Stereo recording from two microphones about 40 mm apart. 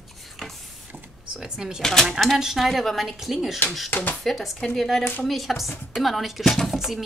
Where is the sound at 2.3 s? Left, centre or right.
Centre.